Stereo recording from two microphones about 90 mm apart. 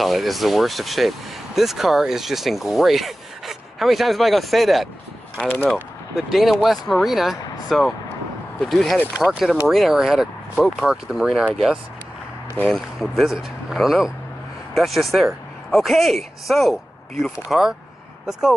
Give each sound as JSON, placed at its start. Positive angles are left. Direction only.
{"t": 0.0, "sound": "speech", "side_deg": 0}
{"t": 5.4, "sound": "speech", "side_deg": 20}
{"t": 6.1, "sound": "speech", "side_deg": 0}
{"t": 12.6, "sound": "speech", "side_deg": 0}